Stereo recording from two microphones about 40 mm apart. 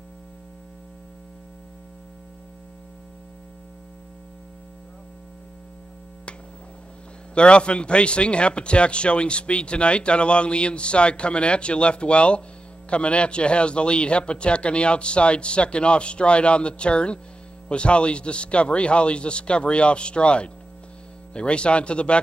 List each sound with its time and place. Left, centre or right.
7.3 s a man's voice: left